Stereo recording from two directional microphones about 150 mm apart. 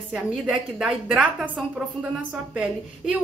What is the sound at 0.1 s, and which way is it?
A woman's voice, 5° right (ahead or behind).